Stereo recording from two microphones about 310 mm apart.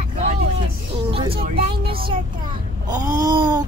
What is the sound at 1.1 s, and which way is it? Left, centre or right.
Speech, centre.